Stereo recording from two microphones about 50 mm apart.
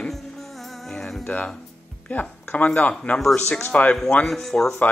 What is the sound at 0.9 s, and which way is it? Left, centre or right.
Speech, centre.